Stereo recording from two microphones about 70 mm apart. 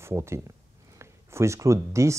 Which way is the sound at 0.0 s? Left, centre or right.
Right.